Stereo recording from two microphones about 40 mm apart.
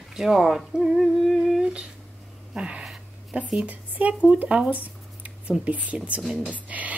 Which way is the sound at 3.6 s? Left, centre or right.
Right.